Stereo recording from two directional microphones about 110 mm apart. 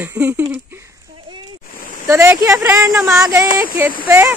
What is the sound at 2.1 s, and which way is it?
Speech, 25° right (ahead or behind).